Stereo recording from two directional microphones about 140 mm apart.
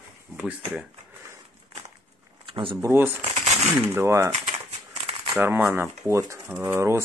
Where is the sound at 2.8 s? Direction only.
15° right (ahead or behind).